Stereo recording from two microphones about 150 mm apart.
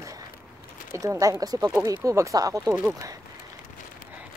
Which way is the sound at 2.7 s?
15° right (ahead or behind).